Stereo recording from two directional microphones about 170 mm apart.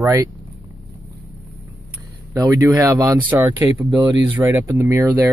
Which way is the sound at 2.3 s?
20° right (ahead or behind).